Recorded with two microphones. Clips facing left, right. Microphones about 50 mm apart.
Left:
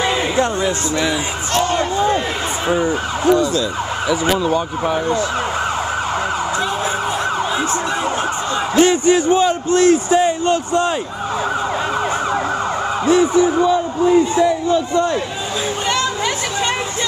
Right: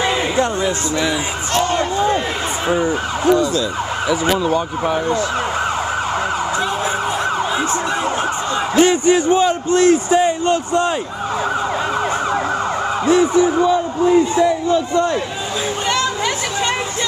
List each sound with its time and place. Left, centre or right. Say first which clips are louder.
7.5 s emergency vehicle: even; right
9.0 s a man's voice: even; centre